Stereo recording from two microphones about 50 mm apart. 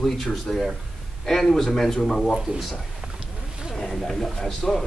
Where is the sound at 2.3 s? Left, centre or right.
Centre.